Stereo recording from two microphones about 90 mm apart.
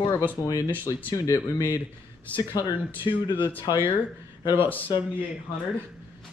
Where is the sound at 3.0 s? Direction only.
60° left (ahead or behind).